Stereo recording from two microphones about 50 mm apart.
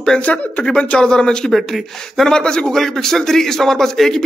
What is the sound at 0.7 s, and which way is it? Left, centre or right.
A man's voice, centre.